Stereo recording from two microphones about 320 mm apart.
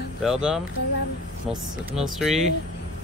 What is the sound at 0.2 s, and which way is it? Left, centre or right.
Speech, centre.